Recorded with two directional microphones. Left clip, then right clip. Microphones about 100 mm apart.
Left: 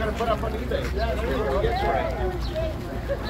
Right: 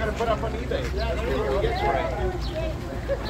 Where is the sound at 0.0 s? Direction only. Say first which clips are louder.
Even; 20° right (ahead or behind).